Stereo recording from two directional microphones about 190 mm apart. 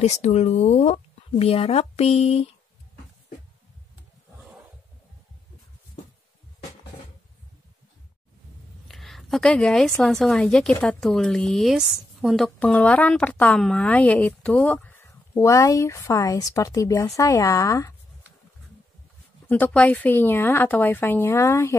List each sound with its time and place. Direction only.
0.0 s speech: 35° left (ahead or behind)
8.8 s a sound: centre (ahead or behind)
9.9 s a woman's voice: centre (ahead or behind)
19.5 s a woman's voice: 5° left (ahead or behind)